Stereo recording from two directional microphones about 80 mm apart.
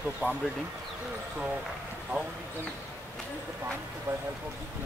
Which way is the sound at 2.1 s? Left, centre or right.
Centre.